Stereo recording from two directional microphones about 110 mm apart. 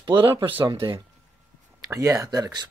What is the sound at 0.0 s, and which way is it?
Speech, 45° right (ahead or behind).